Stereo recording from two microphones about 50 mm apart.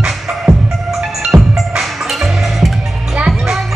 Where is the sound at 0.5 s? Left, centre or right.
Centre.